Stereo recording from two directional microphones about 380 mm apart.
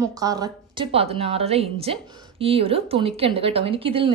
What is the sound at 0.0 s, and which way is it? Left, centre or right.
A woman's voice, centre.